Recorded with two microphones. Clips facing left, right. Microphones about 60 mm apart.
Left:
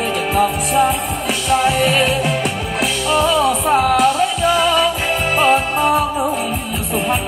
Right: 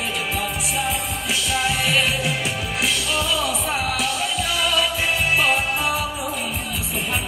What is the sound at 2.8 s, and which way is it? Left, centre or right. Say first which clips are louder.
Music: left 8 dB; left.